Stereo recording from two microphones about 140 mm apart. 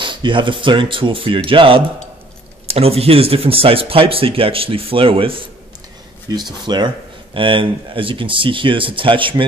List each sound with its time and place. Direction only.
0.0 s speech: 35° right (ahead or behind)